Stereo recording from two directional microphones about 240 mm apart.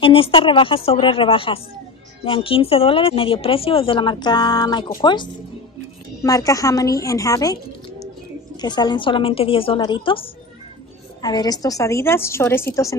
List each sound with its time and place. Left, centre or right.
0.0 s a woman's voice: left
8.5 s a woman's voice: centre